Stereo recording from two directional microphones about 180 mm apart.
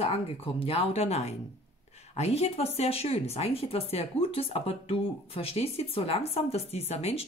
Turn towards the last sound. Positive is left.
turn(degrees=35)  # may be behind; listen again after turning